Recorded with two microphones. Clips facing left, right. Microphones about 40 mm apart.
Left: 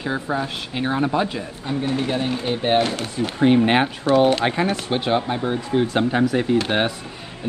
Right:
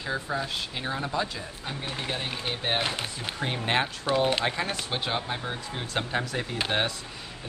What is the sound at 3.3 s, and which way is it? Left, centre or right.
Speech, left.